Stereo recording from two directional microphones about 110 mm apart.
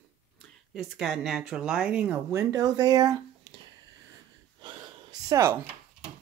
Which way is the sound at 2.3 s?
30° right (ahead or behind).